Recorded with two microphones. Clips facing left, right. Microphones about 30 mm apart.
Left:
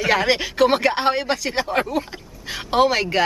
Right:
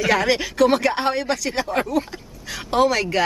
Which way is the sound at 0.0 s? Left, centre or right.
Centre.